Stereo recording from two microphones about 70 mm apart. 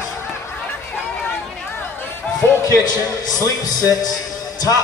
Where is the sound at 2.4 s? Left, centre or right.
Left.